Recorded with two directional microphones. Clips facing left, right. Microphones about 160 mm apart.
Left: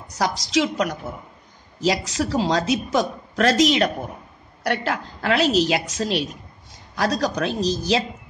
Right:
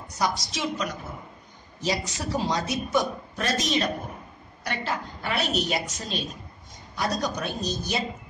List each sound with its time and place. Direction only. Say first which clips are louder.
0.2 s a woman's voice: left 6 dB; 90° left
4.6 s a woman's voice: left 6 dB; 70° left (ahead or behind); by 8.0 s 90° left